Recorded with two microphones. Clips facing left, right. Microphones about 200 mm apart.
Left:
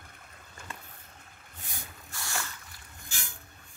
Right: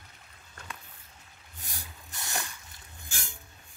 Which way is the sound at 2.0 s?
20° right (ahead or behind).